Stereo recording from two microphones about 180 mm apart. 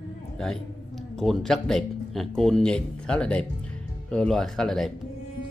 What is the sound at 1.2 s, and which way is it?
Speech, centre (ahead or behind).